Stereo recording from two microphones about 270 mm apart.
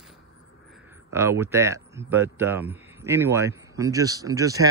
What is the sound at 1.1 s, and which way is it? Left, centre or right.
A man's voice, centre.